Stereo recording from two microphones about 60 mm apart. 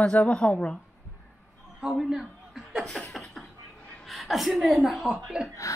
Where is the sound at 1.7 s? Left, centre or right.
Centre.